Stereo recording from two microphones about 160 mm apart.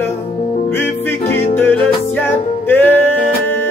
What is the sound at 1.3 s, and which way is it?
Music, 15° left (ahead or behind).